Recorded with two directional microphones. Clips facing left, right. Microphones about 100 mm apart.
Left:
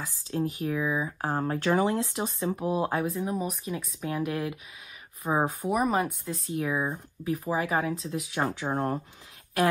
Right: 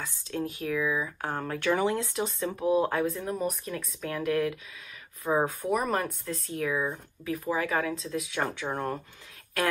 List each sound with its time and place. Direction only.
0.3 s speech: 25° left (ahead or behind)
3.2 s speech: 5° left (ahead or behind)
3.7 s speech: 20° left (ahead or behind)
6.2 s speech: 25° left (ahead or behind)